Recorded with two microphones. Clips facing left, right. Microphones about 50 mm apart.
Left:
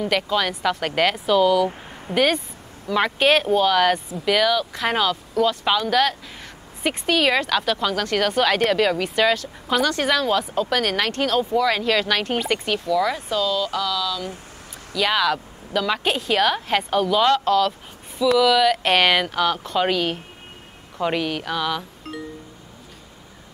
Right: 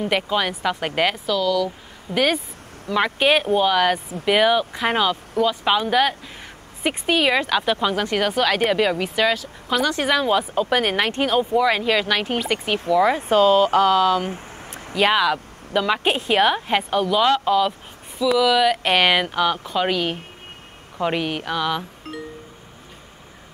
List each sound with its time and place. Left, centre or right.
0.0 s speech: centre
1.2 s speech: centre
2.1 s speech: centre
4.2 s speech: right
4.8 s speech: centre
8.4 s speech: centre
12.8 s speech: right
15.1 s speech: centre